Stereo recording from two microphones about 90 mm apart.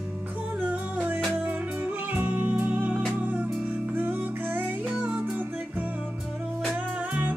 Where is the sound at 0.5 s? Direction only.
15° right (ahead or behind).